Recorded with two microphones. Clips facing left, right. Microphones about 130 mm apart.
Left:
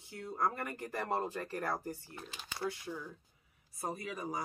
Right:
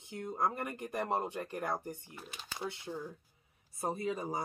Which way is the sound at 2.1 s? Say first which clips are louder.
Left 1 dB; 5° right (ahead or behind).